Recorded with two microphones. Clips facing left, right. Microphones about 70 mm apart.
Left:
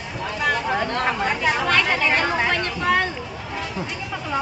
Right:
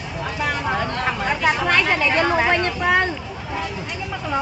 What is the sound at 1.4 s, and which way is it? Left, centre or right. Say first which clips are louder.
Speech: right 2 dB; centre.